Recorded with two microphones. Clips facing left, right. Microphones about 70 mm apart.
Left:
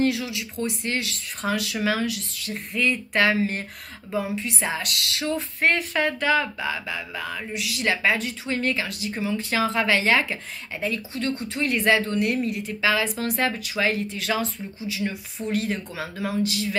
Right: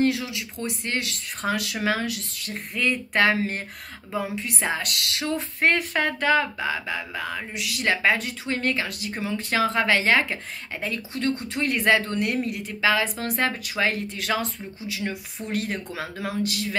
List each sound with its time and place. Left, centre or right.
0.0 s speech: right
4.6 s speech: right
6.4 s a woman's voice: right